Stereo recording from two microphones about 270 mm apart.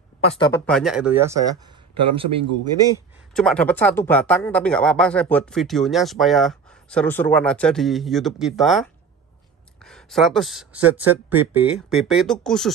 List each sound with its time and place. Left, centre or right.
0.2 s speech: left
0.5 s speech: centre
3.3 s speech: centre
9.8 s speech: centre